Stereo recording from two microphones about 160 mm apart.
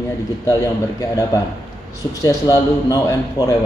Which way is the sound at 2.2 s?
20° left (ahead or behind).